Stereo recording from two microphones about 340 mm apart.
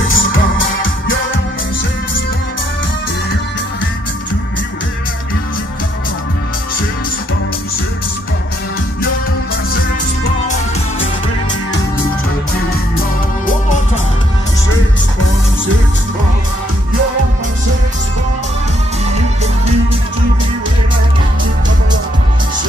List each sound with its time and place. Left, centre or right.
0.1 s music: left
19.1 s music: centre